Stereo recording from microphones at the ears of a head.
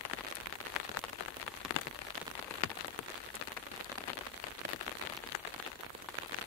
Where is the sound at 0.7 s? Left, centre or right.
Left.